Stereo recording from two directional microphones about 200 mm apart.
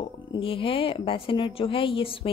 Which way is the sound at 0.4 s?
25° left (ahead or behind).